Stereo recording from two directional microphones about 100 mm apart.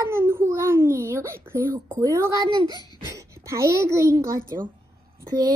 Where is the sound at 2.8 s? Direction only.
45° left (ahead or behind).